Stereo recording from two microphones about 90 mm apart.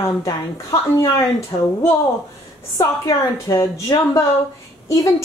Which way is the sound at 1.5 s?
90° left.